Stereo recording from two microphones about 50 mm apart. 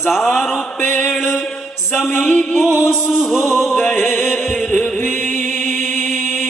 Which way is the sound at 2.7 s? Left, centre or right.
Left.